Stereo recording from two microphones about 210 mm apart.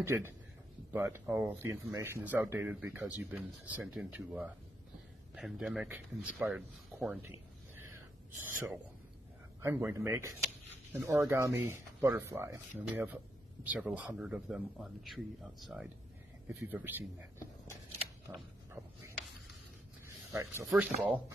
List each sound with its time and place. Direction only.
0.0 s speech: 10° right (ahead or behind)
20.3 s speech: 15° right (ahead or behind)